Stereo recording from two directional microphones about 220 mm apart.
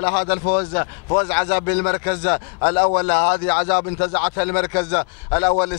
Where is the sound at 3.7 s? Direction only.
30° left (ahead or behind).